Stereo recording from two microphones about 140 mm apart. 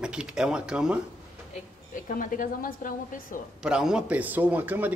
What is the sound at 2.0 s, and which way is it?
A woman's voice, 70° left (ahead or behind).